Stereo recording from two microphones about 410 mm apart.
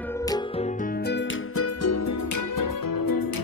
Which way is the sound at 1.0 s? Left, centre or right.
Left.